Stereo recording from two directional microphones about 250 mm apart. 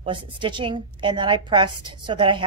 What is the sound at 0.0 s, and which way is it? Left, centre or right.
A woman's voice, centre.